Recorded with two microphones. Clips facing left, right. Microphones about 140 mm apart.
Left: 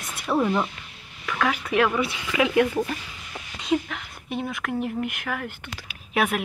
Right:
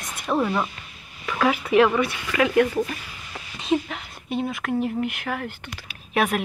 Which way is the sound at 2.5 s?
20° left (ahead or behind).